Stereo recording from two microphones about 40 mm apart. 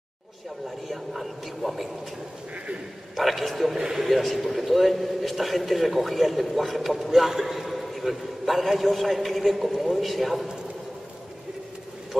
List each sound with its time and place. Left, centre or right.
0.7 s a man's voice: centre
2.5 s speech: right
3.2 s a man's voice: centre